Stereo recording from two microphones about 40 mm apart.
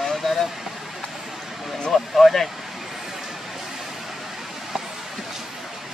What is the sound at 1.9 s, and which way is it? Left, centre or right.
Speech, centre.